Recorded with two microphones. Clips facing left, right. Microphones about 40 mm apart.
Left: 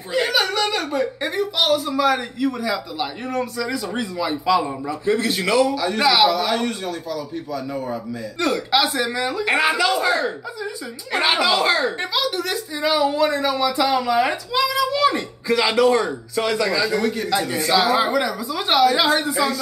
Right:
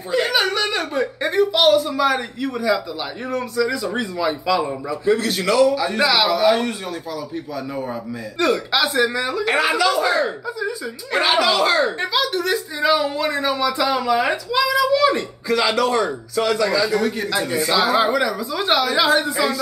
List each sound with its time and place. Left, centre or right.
0.1 s speech: centre
5.2 s speech: centre
5.8 s a man's voice: centre
8.4 s speech: centre
9.4 s a woman's voice: left
10.0 s speech: centre
11.2 s speech: centre
11.8 s speech: centre
17.0 s speech: centre